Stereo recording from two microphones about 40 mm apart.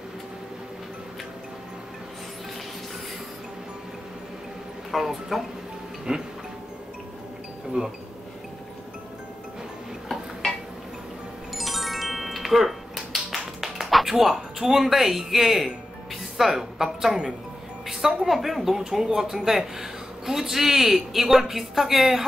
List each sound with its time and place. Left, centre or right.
4.9 s speech: centre
6.1 s music: right
7.8 s a woman's voice: centre
11.5 s music: centre
16.3 s a woman's voice: centre